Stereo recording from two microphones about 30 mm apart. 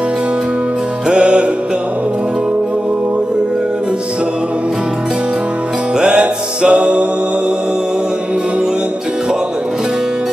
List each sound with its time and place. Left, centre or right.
1.1 s music: right
5.9 s music: right